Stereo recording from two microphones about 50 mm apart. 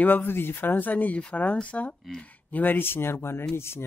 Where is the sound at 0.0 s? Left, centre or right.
Left.